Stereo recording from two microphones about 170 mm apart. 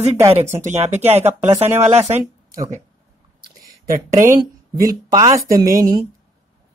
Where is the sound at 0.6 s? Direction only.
40° right (ahead or behind).